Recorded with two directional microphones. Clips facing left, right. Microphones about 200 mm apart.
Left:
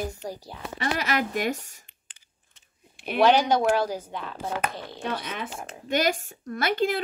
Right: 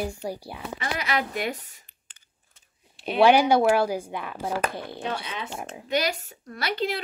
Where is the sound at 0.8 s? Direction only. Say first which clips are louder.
Left 2 dB; 45° left (ahead or behind).